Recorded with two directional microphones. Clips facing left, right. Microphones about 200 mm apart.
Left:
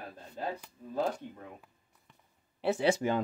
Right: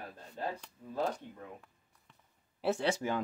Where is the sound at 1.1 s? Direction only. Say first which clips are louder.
Left 2 dB; 5° left (ahead or behind).